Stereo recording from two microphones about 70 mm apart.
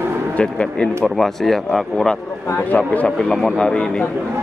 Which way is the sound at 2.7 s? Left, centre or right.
Left.